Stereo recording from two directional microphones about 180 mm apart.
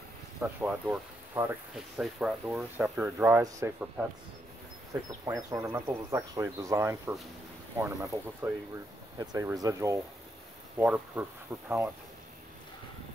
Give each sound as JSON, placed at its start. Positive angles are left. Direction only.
{"t": 0.4, "sound": "speech", "side_deg": -10}
{"t": 5.2, "sound": "speech", "side_deg": -15}